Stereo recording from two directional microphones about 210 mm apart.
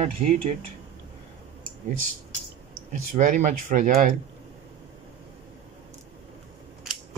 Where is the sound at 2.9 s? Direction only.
35° right (ahead or behind).